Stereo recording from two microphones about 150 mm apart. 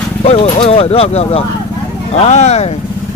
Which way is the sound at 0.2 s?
40° left (ahead or behind).